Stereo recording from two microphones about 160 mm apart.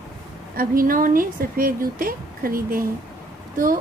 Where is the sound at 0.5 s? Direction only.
60° right (ahead or behind).